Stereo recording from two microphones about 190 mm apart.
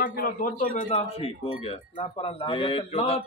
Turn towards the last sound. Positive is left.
turn(degrees=35)  # may be behind; listen again after turning